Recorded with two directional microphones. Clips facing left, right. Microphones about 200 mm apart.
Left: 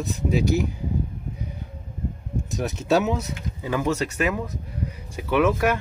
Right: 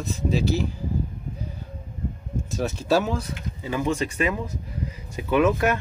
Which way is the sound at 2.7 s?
20° left (ahead or behind).